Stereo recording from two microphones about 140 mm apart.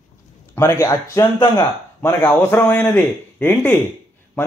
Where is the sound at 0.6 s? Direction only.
20° left (ahead or behind).